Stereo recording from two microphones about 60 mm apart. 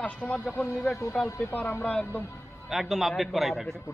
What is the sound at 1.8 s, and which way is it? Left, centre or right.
Speech, left.